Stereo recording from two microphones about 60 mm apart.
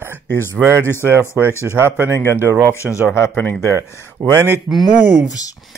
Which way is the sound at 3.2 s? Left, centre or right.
Left.